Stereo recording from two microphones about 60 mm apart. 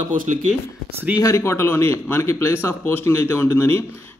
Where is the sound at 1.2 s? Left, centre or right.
Left.